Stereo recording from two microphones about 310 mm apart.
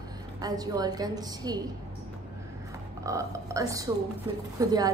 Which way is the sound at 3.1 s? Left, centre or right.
Centre.